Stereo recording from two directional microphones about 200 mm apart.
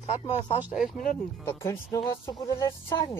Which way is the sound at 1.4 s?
15° left (ahead or behind).